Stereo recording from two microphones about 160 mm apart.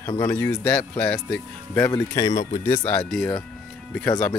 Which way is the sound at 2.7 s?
10° left (ahead or behind).